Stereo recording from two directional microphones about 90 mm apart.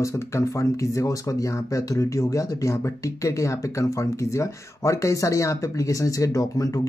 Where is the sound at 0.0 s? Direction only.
35° left (ahead or behind).